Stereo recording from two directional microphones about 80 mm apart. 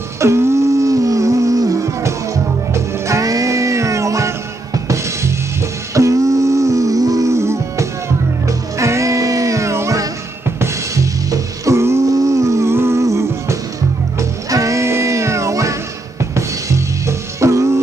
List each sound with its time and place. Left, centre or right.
0.2 s a sound: right
2.7 s music: right
11.2 s music: right